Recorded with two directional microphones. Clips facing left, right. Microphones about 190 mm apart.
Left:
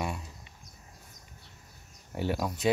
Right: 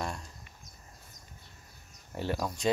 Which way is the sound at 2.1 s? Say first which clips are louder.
Left 2 dB; 5° left (ahead or behind).